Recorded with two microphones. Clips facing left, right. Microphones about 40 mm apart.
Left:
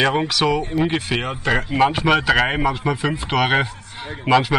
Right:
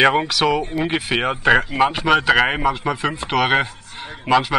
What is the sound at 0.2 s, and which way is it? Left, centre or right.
Speech, centre.